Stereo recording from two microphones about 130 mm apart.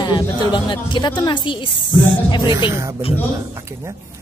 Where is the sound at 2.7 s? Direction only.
20° right (ahead or behind).